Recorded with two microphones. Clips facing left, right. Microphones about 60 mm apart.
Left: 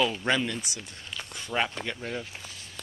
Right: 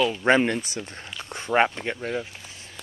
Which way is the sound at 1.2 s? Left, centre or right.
Right.